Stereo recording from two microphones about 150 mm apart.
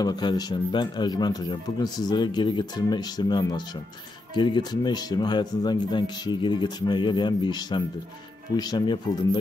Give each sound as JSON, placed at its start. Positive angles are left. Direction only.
{"t": 0.0, "sound": "speech", "side_deg": 25}